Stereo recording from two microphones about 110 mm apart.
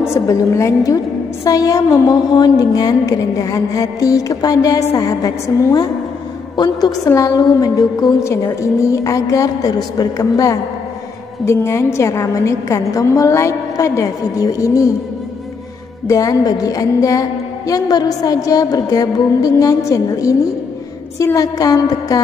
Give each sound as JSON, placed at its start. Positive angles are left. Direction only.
{"t": 0.1, "sound": "a woman's voice", "side_deg": 25}
{"t": 16.1, "sound": "a woman's voice", "side_deg": 30}